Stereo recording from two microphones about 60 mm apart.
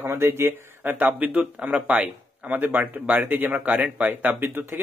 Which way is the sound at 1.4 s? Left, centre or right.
Centre.